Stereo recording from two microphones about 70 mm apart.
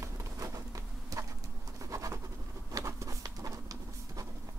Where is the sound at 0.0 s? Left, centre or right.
Right.